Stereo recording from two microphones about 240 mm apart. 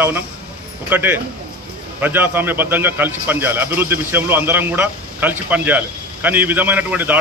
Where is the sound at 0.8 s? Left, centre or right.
Centre.